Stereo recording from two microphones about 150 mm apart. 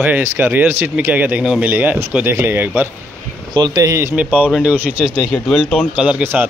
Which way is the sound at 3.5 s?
30° right (ahead or behind).